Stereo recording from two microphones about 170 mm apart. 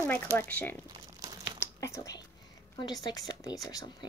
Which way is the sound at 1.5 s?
15° left (ahead or behind).